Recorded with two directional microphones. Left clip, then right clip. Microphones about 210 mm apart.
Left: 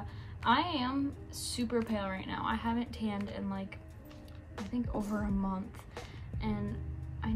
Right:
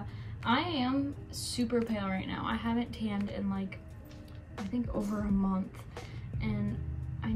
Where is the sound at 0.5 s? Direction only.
15° left (ahead or behind).